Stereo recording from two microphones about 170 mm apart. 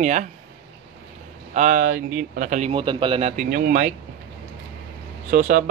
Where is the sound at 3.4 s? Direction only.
55° right (ahead or behind).